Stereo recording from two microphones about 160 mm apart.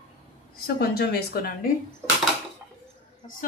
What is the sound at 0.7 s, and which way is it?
Speech, 80° left.